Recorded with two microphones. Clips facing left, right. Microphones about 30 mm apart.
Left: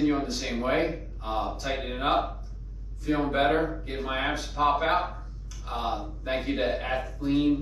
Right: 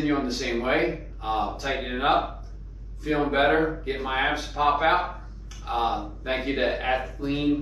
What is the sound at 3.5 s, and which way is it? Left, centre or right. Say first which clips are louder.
Speech: right 3 dB; right.